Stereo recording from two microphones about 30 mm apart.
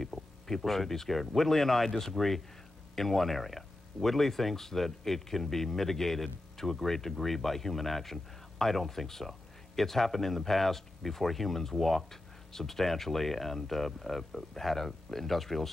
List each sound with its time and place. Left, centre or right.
0.1 s vehicle: centre
0.7 s speech: centre